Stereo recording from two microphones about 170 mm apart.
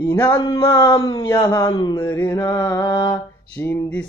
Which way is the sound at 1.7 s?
30° left (ahead or behind).